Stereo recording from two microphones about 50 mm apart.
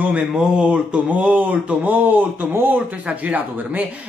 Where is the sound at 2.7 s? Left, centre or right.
Right.